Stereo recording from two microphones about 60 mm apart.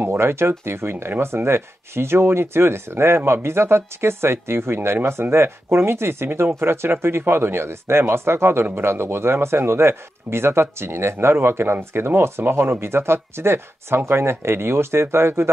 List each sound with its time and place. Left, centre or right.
0.0 s a man's voice: right